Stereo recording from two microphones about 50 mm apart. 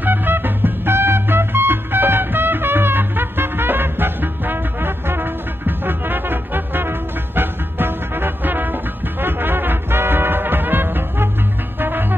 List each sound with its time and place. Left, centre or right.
0.0 s music: right